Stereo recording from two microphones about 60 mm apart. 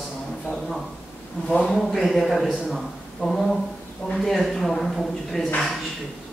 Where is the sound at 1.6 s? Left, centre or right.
Centre.